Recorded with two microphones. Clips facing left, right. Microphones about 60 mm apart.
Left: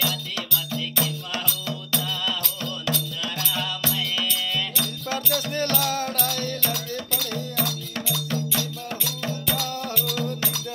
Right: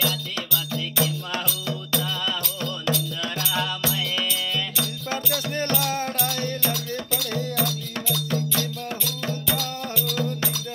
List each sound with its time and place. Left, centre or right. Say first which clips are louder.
1.7 s music: right 2 dB; centre
5.5 s music: right 1 dB; right
6.2 s music: right 1 dB; centre
8.1 s music: right 2 dB; centre